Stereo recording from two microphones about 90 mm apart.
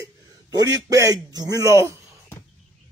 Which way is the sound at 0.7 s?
40° right (ahead or behind).